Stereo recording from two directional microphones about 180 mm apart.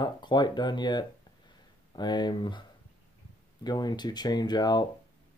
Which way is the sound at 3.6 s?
25° left (ahead or behind).